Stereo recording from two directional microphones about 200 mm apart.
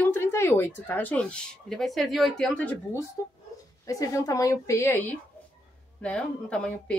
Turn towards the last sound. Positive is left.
turn(degrees=5)  # may be behind; listen again after turning